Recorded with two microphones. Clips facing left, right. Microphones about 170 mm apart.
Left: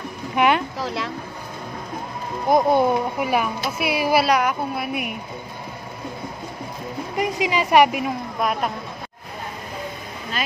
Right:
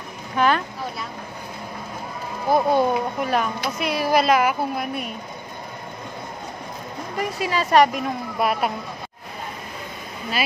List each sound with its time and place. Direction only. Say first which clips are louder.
0.4 s speech: left 1 dB; 15° left (ahead or behind)
0.7 s a sound: left 4 dB; 90° left
2.5 s speech: left 2 dB; 15° left (ahead or behind); by 4.8 s 5° right (ahead or behind)
4.8 s speech: left 2 dB; 10° left (ahead or behind)
7.2 s speech: left 2 dB; 15° left (ahead or behind)
8.4 s speech: right 2 dB; 5° right (ahead or behind)